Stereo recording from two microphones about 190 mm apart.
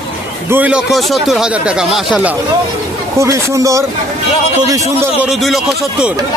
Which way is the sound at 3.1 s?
15° right (ahead or behind).